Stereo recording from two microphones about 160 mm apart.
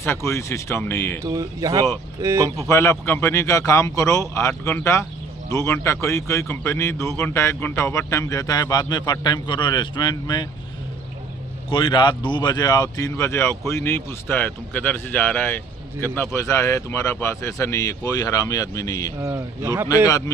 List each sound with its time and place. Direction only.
0.0 s speech: 15° left (ahead or behind)
1.2 s speech: 20° right (ahead or behind)
2.7 s speech: 15° left (ahead or behind)
11.7 s speech: 30° left (ahead or behind)
19.2 s speech: 20° right (ahead or behind)
20.1 s speech: 20° left (ahead or behind)